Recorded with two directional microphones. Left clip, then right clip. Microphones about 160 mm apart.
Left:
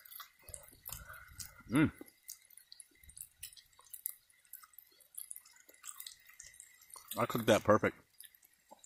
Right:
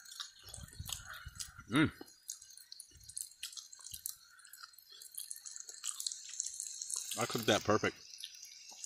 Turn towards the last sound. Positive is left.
turn(degrees=25)  # may be behind; listen again after turning